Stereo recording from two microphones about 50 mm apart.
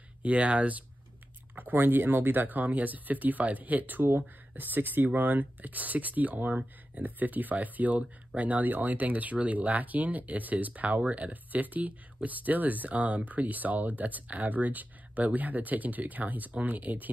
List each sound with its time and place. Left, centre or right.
0.2 s speech: right